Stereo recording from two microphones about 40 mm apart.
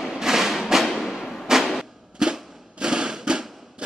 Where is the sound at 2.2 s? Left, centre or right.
Centre.